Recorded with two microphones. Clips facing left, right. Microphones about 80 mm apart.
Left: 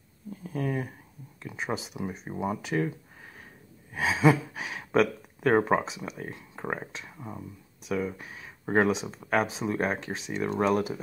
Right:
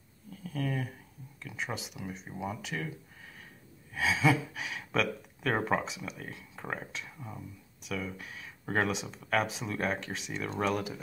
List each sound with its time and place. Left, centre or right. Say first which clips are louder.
0.3 s a sound: left 4 dB; left
1.4 s speech: left 5 dB; left
3.9 s speech: left 4 dB; left